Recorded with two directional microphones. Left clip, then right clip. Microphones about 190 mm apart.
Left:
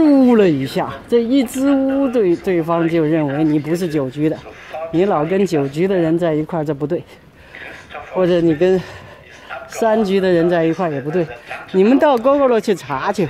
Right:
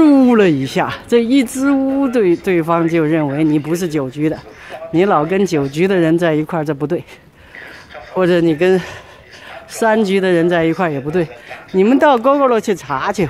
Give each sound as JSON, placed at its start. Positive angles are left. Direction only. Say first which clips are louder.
{"t": 0.0, "sound": "a woman's voice", "louder": "right 2 dB", "side_deg": -15}